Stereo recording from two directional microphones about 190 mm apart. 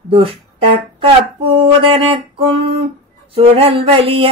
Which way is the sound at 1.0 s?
30° right (ahead or behind).